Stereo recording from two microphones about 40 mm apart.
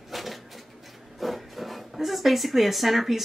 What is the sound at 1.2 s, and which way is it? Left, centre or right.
Speech, centre.